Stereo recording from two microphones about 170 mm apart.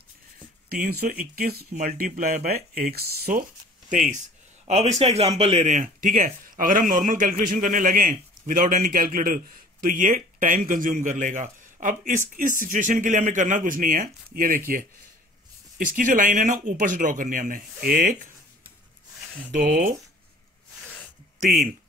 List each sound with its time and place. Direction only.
0.7 s speech: 55° right (ahead or behind)
1.3 s speech: 65° right (ahead or behind)
1.7 s speech: 55° right (ahead or behind)
4.6 s a man's voice: 40° right (ahead or behind)
16.0 s a man's voice: 50° right (ahead or behind)
19.5 s a man's voice: 50° right (ahead or behind)